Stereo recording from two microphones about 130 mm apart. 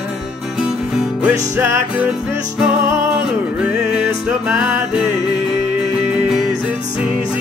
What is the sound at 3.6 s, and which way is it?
Music, 5° right (ahead or behind).